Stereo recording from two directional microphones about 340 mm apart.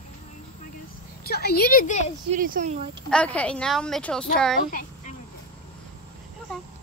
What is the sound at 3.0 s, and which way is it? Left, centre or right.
Speech, centre.